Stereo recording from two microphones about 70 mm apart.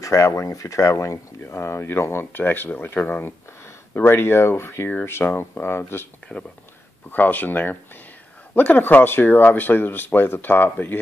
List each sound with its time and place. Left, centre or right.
0.0 s speech: left
7.1 s speech: left